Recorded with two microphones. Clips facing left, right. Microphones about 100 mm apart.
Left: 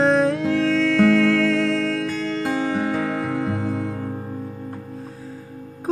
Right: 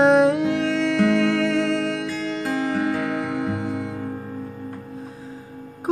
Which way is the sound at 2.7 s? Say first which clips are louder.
Even; 25° left (ahead or behind).